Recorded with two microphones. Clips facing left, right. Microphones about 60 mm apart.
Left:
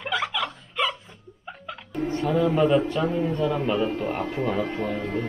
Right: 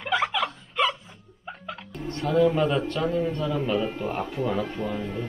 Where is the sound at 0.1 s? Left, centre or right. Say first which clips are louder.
Right 3 dB; centre.